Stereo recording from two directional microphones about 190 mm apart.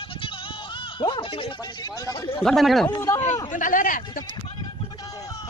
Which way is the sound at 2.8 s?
20° left (ahead or behind).